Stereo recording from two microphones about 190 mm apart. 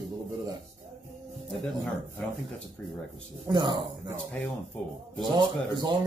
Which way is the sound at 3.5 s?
25° right (ahead or behind).